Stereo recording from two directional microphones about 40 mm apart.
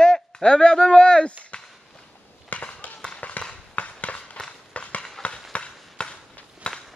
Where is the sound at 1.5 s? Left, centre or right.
Left.